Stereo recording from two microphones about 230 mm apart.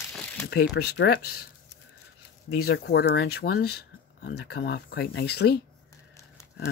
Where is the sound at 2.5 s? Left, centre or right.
Left.